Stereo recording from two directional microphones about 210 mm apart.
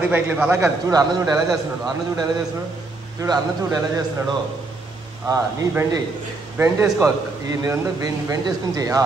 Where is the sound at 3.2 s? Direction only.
15° right (ahead or behind).